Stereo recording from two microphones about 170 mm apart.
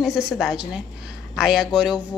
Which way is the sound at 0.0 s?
5° right (ahead or behind).